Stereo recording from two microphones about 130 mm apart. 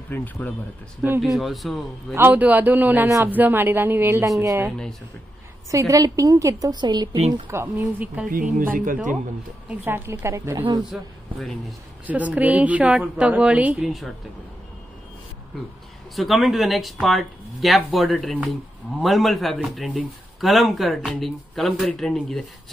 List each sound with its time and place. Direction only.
0.1 s speech: 15° left (ahead or behind)
1.2 s speech: centre (ahead or behind)
2.1 s a woman's voice: 15° right (ahead or behind); by 7.1 s 35° right (ahead or behind)
7.7 s a woman's voice: 15° right (ahead or behind)
8.3 s speech: 90° right
9.7 s a woman's voice: 15° right (ahead or behind)
10.9 s speech: centre (ahead or behind)
12.1 s a woman's voice: 10° right (ahead or behind)
16.2 s speech: centre (ahead or behind)